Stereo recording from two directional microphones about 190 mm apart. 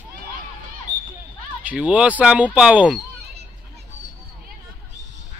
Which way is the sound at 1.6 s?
5° right (ahead or behind).